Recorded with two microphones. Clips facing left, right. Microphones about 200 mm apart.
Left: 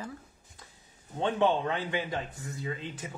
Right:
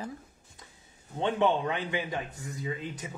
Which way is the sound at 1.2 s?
20° right (ahead or behind).